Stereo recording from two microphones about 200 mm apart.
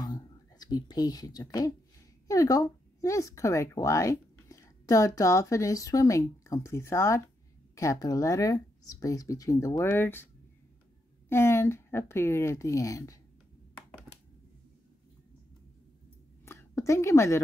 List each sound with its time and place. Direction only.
0.0 s whispering: 20° left (ahead or behind)
2.2 s speech: 15° left (ahead or behind)
11.2 s speech: 10° left (ahead or behind)
16.4 s a sound: 15° left (ahead or behind)